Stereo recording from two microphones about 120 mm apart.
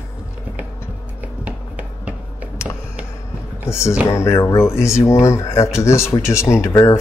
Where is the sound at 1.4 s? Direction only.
10° right (ahead or behind).